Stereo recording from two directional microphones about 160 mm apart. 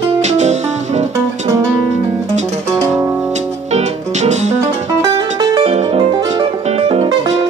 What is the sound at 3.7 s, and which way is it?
Music, 45° right (ahead or behind).